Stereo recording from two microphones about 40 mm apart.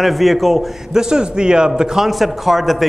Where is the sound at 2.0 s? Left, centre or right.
Centre.